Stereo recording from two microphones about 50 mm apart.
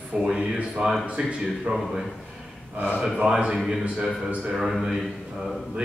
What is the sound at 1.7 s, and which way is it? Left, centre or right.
A man's voice, right.